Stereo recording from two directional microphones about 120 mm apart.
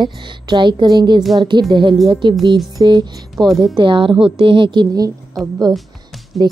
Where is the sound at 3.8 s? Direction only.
45° right (ahead or behind).